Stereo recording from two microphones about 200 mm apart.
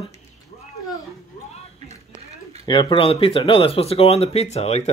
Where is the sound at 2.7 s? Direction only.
20° left (ahead or behind).